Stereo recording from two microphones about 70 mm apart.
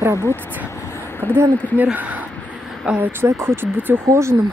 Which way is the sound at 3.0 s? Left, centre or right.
Right.